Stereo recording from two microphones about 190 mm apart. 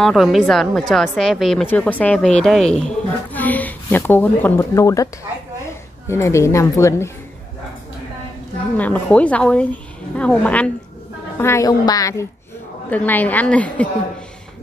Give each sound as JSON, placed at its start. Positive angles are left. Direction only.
{"t": 0.0, "sound": "a woman's voice", "side_deg": 0}
{"t": 8.7, "sound": "a woman's voice", "side_deg": 10}